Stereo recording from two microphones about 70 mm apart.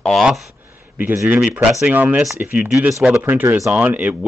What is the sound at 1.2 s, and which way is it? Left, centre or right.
Speech, right.